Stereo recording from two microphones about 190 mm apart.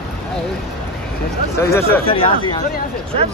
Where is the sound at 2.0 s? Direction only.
25° left (ahead or behind).